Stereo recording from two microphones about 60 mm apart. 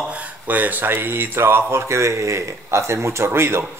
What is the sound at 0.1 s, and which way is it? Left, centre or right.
Speech, right.